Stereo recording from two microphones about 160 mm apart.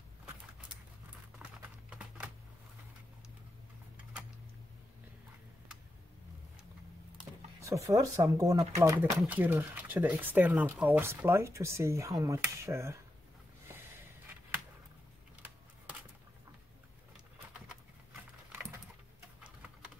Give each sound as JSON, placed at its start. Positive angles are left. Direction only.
{"t": 1.4, "sound": "typing", "side_deg": -5}
{"t": 7.6, "sound": "speech", "side_deg": -20}